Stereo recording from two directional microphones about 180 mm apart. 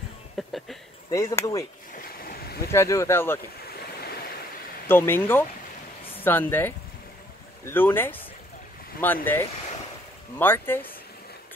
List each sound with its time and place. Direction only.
0.4 s a sound: centre (ahead or behind)
1.1 s speech: 15° left (ahead or behind)
2.1 s boat: 55° left (ahead or behind)
2.7 s speech: 15° left (ahead or behind)
4.8 s speech: 10° left (ahead or behind)